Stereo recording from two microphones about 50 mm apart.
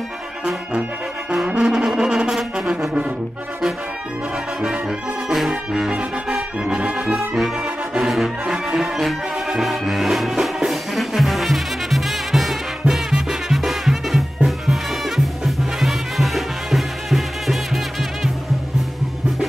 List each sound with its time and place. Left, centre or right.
1.3 s brass instrument: centre
4.6 s brass instrument: centre
6.8 s brass instrument: right
7.6 s brass instrument: centre
8.7 s music: centre